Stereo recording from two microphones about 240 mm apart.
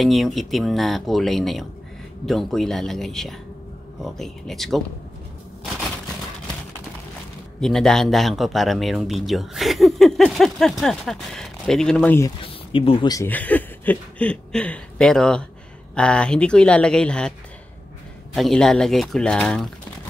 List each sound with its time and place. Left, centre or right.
0.0 s speech: centre
7.6 s speech: centre
12.4 s speech: left; by 17.3 s centre
18.3 s speech: centre